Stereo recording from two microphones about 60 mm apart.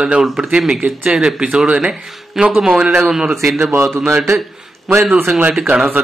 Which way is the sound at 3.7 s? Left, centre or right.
Right.